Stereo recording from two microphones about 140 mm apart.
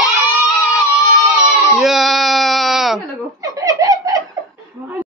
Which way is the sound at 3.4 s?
25° right (ahead or behind).